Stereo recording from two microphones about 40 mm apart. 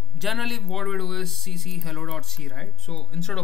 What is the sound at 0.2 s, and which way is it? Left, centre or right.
Speech, centre.